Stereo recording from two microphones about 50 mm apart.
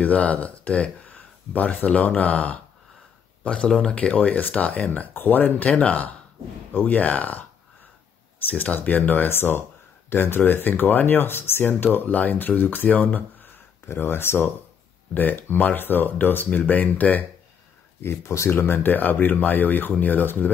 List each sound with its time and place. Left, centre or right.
0.0 s speech: left
3.4 s speech: left
8.5 s speech: left
13.8 s speech: left
15.1 s speech: left
18.0 s speech: left
18.5 s speech: left